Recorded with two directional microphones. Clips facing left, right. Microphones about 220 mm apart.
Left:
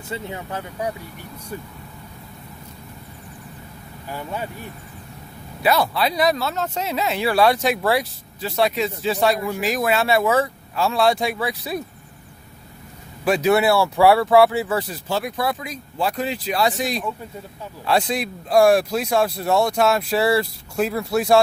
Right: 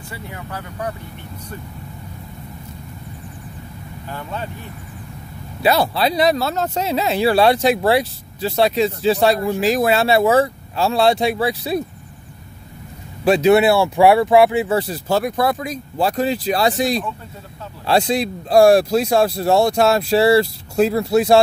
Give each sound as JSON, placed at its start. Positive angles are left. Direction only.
{"t": 0.1, "sound": "speech", "side_deg": 20}
{"t": 4.1, "sound": "speech", "side_deg": 10}
{"t": 5.6, "sound": "speech", "side_deg": -30}
{"t": 13.2, "sound": "speech", "side_deg": -25}
{"t": 15.0, "sound": "speech", "side_deg": -45}